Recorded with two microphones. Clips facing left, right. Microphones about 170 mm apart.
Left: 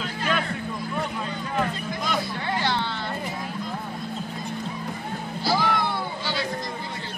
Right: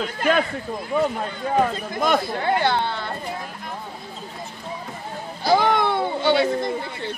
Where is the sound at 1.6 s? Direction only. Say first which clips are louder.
Right 6 dB; 50° right (ahead or behind).